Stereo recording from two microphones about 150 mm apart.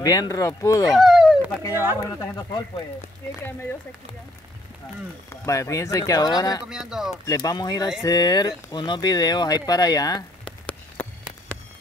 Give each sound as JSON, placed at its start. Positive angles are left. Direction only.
{"t": 0.0, "sound": "speech", "side_deg": 25}
{"t": 0.9, "sound": "a sound", "side_deg": 0}
{"t": 1.7, "sound": "speech", "side_deg": -15}
{"t": 2.0, "sound": "speech", "side_deg": 25}
{"t": 5.3, "sound": "speech", "side_deg": 20}
{"t": 6.7, "sound": "speech", "side_deg": -5}
{"t": 7.2, "sound": "speech", "side_deg": 25}